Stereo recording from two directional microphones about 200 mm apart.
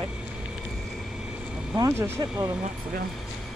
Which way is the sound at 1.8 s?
15° right (ahead or behind).